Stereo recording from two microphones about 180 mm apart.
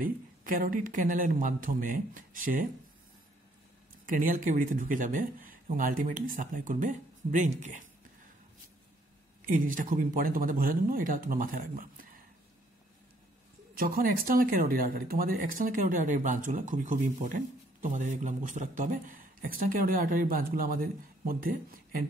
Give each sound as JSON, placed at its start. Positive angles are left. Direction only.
{"t": 0.0, "sound": "speech", "side_deg": -50}
{"t": 4.1, "sound": "speech", "side_deg": -45}
{"t": 9.5, "sound": "speech", "side_deg": -50}
{"t": 13.7, "sound": "speech", "side_deg": -55}